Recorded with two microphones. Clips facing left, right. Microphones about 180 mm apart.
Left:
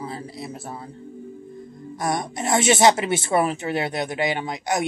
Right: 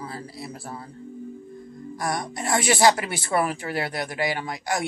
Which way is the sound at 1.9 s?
20° left (ahead or behind).